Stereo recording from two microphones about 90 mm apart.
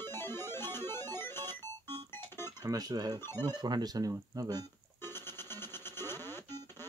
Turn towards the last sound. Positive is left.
turn(degrees=25)  # may be behind; listen again after turning